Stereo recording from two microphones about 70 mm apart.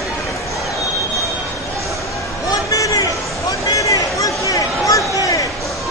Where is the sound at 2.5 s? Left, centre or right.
Left.